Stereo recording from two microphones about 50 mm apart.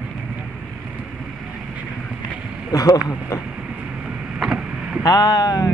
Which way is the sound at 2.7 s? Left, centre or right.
Left.